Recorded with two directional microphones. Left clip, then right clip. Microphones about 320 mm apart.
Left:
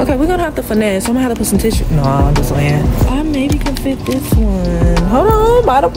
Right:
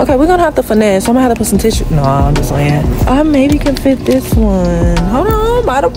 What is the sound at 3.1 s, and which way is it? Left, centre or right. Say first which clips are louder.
Speech: right 9 dB; centre.